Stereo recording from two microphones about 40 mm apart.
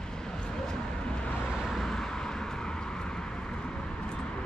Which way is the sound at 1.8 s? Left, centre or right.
Centre.